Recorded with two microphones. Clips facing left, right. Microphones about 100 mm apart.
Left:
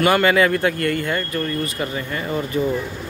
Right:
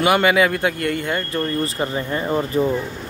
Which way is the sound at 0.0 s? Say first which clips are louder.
Even; 10° right (ahead or behind).